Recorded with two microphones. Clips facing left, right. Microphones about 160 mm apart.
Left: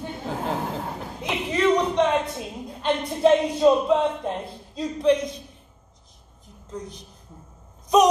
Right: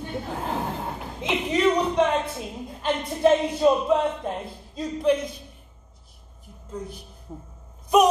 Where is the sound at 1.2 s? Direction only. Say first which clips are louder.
Right 1 dB; 15° right (ahead or behind).